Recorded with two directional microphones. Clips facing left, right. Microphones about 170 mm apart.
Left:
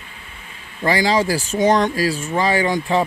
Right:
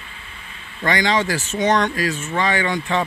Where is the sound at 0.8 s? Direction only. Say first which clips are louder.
Left 2 dB; 30° left (ahead or behind).